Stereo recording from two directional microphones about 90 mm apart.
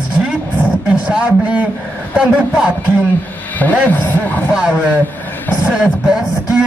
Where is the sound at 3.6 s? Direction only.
20° left (ahead or behind).